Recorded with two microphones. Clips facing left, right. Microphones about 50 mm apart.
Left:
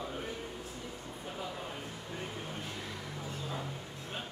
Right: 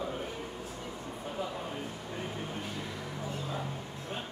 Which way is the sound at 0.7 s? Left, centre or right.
Right.